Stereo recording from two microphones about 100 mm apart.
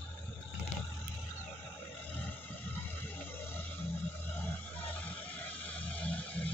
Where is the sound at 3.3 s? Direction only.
20° left (ahead or behind).